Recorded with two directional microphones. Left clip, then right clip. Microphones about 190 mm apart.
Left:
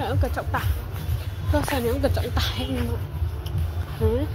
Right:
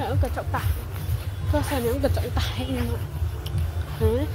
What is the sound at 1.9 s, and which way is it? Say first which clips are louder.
Speech: left 1 dB; 10° right (ahead or behind).